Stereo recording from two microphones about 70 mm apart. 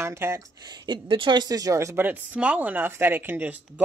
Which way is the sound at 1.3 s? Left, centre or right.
Right.